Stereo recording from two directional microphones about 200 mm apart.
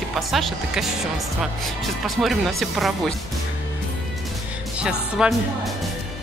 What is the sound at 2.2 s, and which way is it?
Speech, centre (ahead or behind).